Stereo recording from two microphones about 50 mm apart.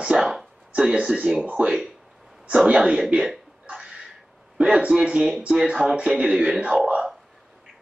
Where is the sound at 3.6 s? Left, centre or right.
Right.